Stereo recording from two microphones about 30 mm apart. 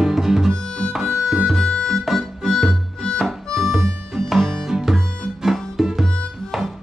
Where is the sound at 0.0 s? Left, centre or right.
Centre.